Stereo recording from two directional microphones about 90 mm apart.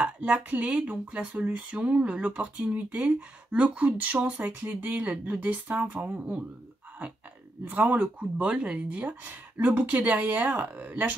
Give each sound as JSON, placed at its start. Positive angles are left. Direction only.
{"t": 0.0, "sound": "speech", "side_deg": -15}
{"t": 7.6, "sound": "speech", "side_deg": -20}